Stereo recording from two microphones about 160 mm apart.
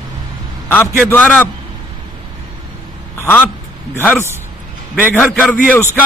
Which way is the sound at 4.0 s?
15° left (ahead or behind).